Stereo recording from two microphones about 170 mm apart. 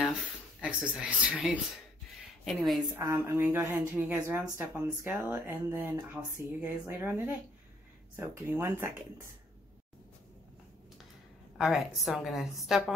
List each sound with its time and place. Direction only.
0.6 s a woman's voice: 5° right (ahead or behind)
2.9 s speech: 15° right (ahead or behind)
11.5 s a woman's voice: centre (ahead or behind)